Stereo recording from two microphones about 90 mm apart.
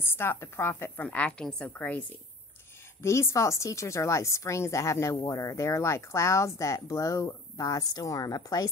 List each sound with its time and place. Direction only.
0.0 s a woman's voice: 30° left (ahead or behind)
3.0 s a woman's voice: 30° left (ahead or behind)